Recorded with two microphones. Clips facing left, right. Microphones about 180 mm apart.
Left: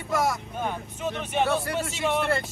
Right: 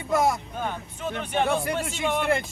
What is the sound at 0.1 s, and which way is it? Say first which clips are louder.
Speech: right 3 dB; 25° right (ahead or behind).